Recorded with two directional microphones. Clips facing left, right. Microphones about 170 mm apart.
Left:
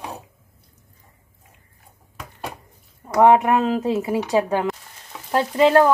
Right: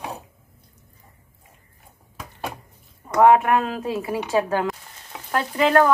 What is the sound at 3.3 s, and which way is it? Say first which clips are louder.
Speech: left 2 dB; 20° left (ahead or behind).